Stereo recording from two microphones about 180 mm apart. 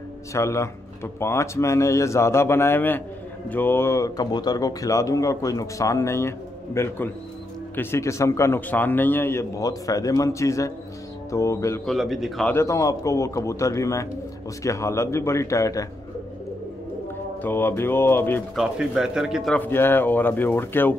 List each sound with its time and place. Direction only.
0.3 s speech: 15° left (ahead or behind)
11.8 s a man's voice: centre (ahead or behind)
12.5 s speech: 15° left (ahead or behind)
17.4 s speech: 10° left (ahead or behind)
18.6 s speech: 5° right (ahead or behind)